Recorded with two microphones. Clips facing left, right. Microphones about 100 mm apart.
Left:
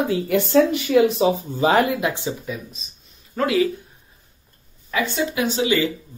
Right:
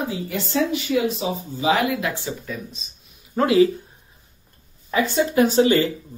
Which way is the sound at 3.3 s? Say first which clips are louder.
Right 3 dB; 30° right (ahead or behind).